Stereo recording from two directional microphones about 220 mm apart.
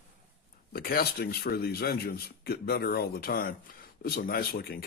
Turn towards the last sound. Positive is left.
turn(degrees=45)  # may be behind; listen again after turning